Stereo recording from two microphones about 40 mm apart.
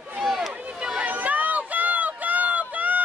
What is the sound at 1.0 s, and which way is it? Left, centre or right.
Run, right.